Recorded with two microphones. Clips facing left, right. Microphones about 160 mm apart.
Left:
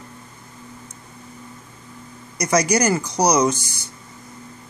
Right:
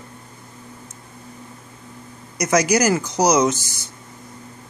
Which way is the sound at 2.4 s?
Centre (ahead or behind).